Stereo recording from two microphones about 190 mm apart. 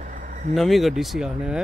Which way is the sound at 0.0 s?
45° right (ahead or behind).